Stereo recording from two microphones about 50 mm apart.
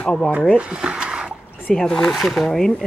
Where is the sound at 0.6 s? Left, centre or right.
Right.